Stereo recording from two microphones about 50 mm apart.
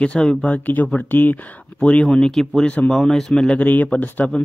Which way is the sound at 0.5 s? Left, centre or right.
Left.